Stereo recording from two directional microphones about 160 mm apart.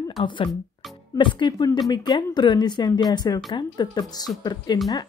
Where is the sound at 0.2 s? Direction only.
30° left (ahead or behind).